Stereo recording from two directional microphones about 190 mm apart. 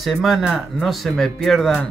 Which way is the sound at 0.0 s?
Centre (ahead or behind).